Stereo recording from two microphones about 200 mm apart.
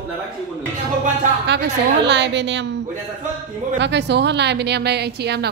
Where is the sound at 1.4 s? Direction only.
60° right (ahead or behind).